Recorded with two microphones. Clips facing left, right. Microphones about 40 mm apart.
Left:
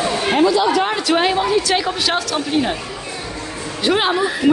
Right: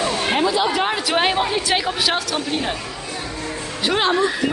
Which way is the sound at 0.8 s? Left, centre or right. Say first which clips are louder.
Left 2 dB; centre.